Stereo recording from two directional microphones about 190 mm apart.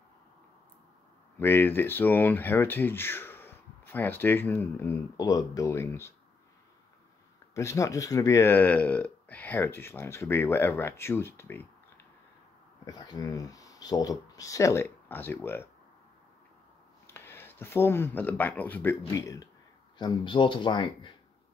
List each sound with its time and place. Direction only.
1.4 s speech: 10° left (ahead or behind)
7.5 s speech: 15° left (ahead or behind)
12.8 s speech: 20° left (ahead or behind)
17.1 s speech: 10° left (ahead or behind)